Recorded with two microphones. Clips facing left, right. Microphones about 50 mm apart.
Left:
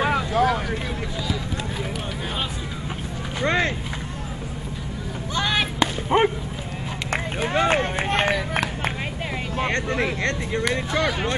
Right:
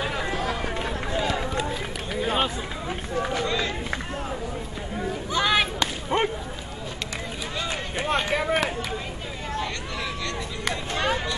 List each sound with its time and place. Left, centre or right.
0.0 s vehicle: left
3.4 s run: left
5.3 s a sound: centre
5.8 s whip: centre
7.1 s run: left
9.6 s a sound: left